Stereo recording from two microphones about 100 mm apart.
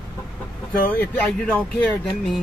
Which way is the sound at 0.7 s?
15° left (ahead or behind).